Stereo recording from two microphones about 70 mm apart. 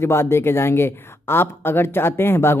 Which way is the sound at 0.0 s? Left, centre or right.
Left.